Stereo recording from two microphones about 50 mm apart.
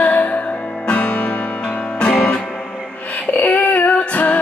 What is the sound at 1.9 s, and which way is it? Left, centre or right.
Music, centre.